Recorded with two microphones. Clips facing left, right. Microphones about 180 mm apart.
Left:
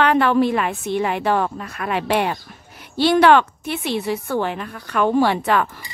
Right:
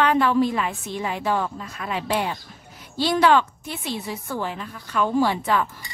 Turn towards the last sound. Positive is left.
turn(degrees=70)  # may be behind; listen again after turning